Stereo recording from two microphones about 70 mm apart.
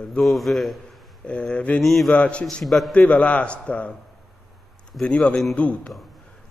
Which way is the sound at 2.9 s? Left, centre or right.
Centre.